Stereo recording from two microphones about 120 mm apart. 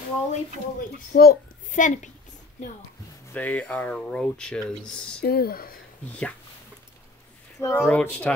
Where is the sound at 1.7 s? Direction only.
90° left.